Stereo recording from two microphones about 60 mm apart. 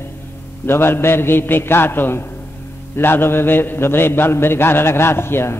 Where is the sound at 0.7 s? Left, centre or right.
Left.